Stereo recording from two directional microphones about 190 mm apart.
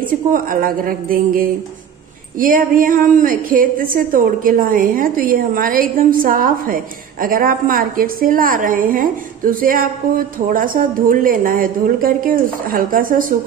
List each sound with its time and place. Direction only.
0.0 s a woman's voice: 45° right (ahead or behind)